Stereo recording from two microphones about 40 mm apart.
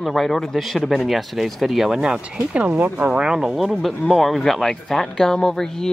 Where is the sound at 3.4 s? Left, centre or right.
Centre.